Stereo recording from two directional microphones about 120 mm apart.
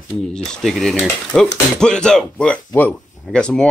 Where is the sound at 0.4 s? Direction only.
Centre (ahead or behind).